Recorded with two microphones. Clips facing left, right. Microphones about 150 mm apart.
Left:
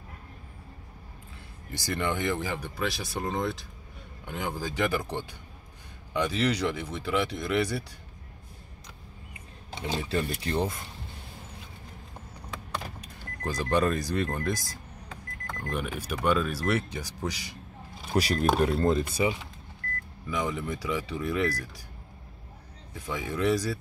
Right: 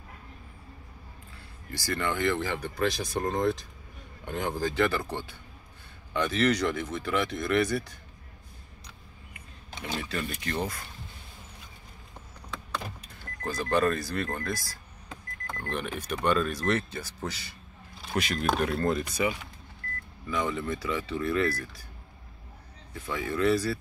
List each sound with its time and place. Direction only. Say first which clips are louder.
1.7 s speech: left 1 dB; 20° left (ahead or behind)
9.7 s speech: left 3 dB; 30° left (ahead or behind)
13.0 s speech: left 1 dB; 15° left (ahead or behind)
15.6 s speech: left 1 dB; 10° left (ahead or behind)
18.1 s speech: left 4 dB; 35° left (ahead or behind)
18.6 s speech: left 3 dB; 25° left (ahead or behind)
20.2 s speech: right 1 dB; 15° left (ahead or behind)
22.9 s speech: right 1 dB; 15° left (ahead or behind)